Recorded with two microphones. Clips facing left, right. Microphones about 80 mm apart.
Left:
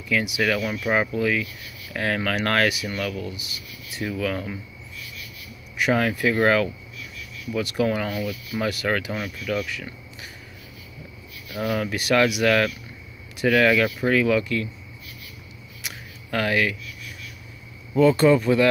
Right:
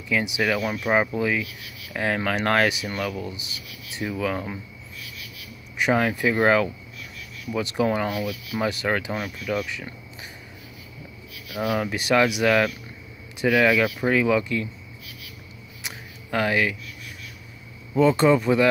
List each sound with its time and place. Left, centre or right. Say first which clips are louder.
0.1 s speech: even; right
5.8 s speech: even; right
11.4 s speech: right 1 dB; centre
11.8 s speech: left 1 dB; right
14.0 s speech: even; right
15.8 s a sound: even; right
17.9 s speech: left 1 dB; right